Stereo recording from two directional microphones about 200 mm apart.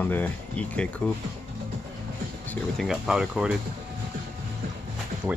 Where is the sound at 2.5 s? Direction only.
Centre (ahead or behind).